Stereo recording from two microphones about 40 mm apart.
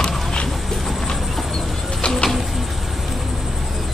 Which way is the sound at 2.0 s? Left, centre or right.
Left.